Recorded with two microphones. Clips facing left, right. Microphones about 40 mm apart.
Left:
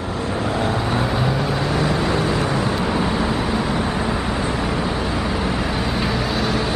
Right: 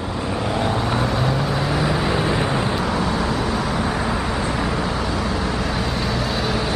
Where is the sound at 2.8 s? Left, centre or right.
Centre.